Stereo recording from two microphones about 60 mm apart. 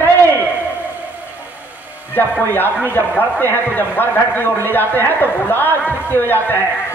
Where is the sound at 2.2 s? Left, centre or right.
Left.